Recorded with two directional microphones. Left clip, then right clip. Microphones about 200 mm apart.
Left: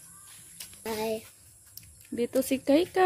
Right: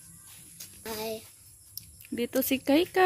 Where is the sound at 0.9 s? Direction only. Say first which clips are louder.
Left 4 dB; 40° left (ahead or behind).